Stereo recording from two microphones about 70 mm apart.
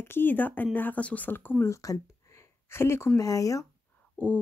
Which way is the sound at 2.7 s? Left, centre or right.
Left.